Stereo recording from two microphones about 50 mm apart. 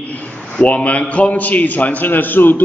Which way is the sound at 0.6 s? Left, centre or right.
Left.